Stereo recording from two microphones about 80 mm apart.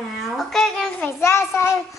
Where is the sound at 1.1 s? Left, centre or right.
Left.